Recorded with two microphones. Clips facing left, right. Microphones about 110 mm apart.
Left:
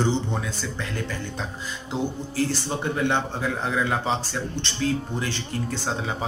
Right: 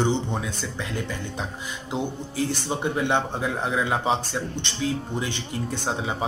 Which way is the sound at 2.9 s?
15° right (ahead or behind).